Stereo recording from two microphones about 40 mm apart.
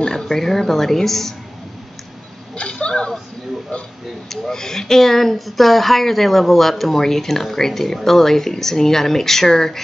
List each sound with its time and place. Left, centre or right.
0.0 s speech: centre
2.5 s chuckle: left
4.3 s speech: centre